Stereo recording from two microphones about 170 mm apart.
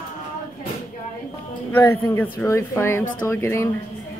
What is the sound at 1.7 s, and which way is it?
Speech, 15° left (ahead or behind).